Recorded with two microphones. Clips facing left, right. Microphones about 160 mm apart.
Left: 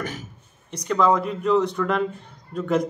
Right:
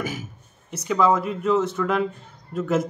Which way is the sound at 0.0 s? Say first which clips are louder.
Right 2 dB; 10° right (ahead or behind).